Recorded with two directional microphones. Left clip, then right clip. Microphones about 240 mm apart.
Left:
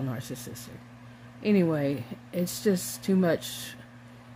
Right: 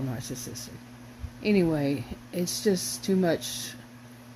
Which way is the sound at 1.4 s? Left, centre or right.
Centre.